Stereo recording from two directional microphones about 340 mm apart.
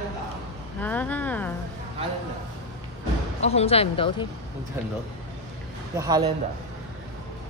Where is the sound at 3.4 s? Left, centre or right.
Centre.